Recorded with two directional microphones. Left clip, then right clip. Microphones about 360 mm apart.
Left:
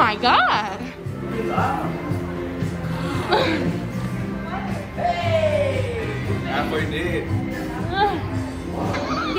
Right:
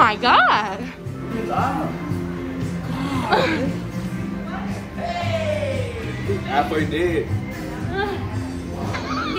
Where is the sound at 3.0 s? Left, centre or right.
Centre.